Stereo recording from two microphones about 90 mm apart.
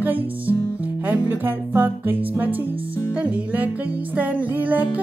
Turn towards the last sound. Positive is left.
turn(degrees=-20)  # may be behind; listen again after turning